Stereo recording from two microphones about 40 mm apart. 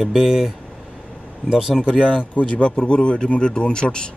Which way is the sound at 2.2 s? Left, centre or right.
Left.